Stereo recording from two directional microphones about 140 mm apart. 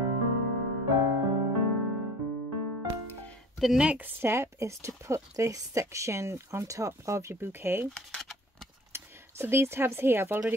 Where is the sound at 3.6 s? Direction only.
5° right (ahead or behind).